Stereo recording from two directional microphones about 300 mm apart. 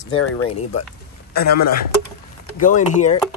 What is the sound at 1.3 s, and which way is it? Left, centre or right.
Speech, left.